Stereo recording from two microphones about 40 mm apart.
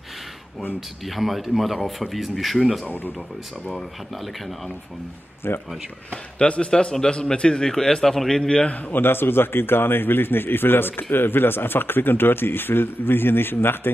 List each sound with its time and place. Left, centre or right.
0.7 s speech: centre
5.4 s speech: left
6.3 s a man's voice: left
6.7 s a man's voice: centre
8.9 s a man's voice: left